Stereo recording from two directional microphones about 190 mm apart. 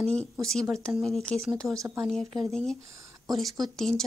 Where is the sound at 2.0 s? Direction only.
Centre (ahead or behind).